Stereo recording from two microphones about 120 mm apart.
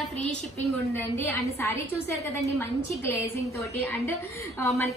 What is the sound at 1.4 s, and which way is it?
Speech, 25° left (ahead or behind).